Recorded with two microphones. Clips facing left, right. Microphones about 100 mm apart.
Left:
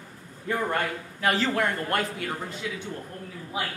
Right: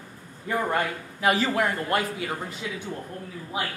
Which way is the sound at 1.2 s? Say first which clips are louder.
Right 2 dB; 10° right (ahead or behind).